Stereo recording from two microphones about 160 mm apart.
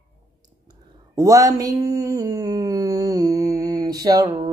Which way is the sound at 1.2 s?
20° right (ahead or behind).